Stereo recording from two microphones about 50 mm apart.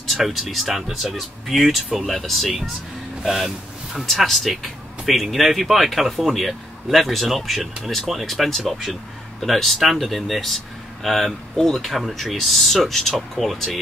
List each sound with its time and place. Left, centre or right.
0.1 s speech: centre